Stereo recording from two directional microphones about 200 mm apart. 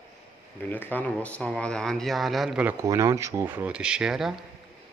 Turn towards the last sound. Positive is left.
turn(degrees=0)  # may be behind; listen again after turning